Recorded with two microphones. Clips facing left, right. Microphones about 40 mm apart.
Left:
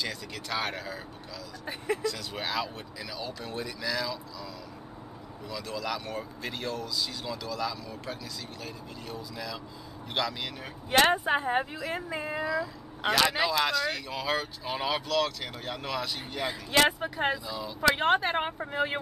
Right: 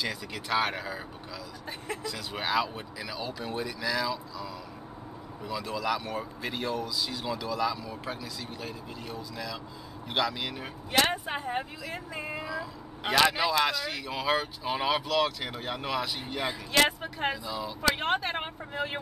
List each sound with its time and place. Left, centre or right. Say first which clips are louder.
0.0 s speech: right 1 dB; centre
2.0 s speech: even; centre
5.5 s speech: right 3 dB; centre
11.2 s a woman's voice: left 6 dB; left
12.4 s speech: left 5 dB; centre
16.8 s speech: left 2 dB; centre
17.5 s speech: right 2 dB; centre
17.9 s speech: left 4 dB; centre
18.7 s a woman's voice: left 2 dB; left